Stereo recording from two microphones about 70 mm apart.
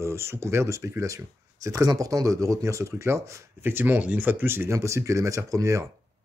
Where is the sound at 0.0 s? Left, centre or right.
Right.